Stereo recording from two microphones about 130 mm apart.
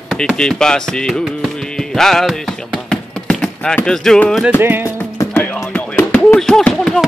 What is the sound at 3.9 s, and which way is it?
Speech, 5° left (ahead or behind).